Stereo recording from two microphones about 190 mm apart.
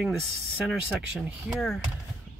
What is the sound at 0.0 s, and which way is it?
Speech, 5° right (ahead or behind).